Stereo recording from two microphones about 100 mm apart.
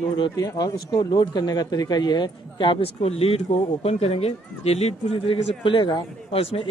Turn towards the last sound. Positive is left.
turn(degrees=75)  # may be behind; listen again after turning